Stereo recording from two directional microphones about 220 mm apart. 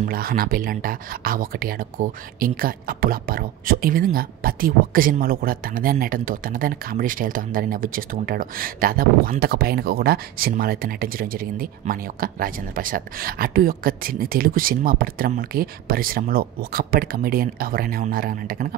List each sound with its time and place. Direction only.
0.1 s speech: 40° right (ahead or behind)